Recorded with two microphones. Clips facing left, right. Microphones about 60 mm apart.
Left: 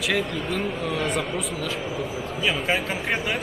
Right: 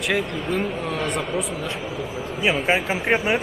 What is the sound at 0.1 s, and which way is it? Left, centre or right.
Speech, centre.